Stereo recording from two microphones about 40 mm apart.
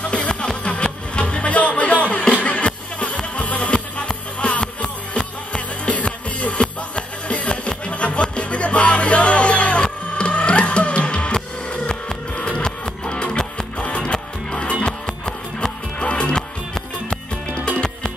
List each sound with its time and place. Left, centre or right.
0.0 s music: left
14.9 s music: centre
16.0 s music: left